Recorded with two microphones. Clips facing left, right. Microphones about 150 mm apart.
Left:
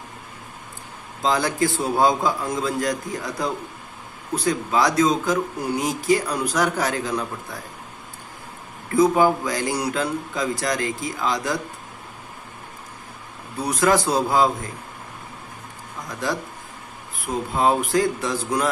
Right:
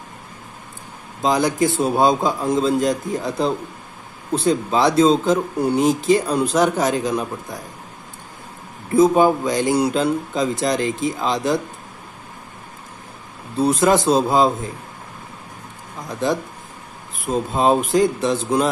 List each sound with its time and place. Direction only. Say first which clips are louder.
1.2 s speech: right 3 dB; 20° right (ahead or behind)
8.9 s speech: right 3 dB; 20° right (ahead or behind)
13.6 s speech: right 4 dB; 25° right (ahead or behind)
16.1 s speech: right 5 dB; 20° right (ahead or behind)